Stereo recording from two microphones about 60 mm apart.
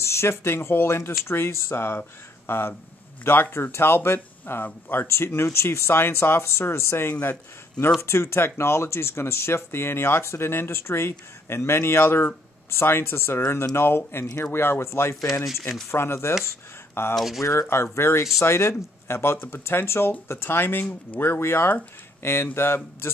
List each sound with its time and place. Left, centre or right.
0.0 s speech: left
5.0 s speech: left
17.1 s speech: centre
17.4 s speech: left